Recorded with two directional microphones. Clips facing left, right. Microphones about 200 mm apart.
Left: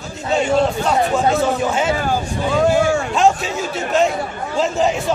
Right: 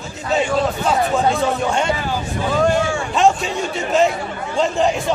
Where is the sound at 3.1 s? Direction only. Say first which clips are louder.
Even; centre (ahead or behind).